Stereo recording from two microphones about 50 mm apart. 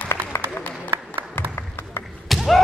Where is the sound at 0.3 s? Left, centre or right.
Left.